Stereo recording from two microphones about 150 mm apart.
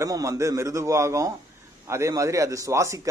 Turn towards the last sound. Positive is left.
turn(degrees=-20)  # may be behind; listen again after turning